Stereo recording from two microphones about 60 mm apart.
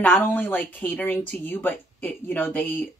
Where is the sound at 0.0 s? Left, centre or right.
Left.